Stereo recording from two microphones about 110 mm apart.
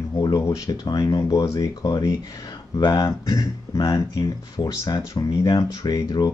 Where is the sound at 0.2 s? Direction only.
35° left (ahead or behind).